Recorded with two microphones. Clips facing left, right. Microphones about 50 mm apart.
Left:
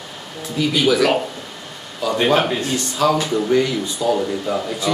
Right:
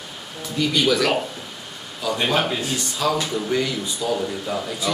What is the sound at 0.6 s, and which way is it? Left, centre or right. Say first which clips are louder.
Speech: left 3 dB; centre.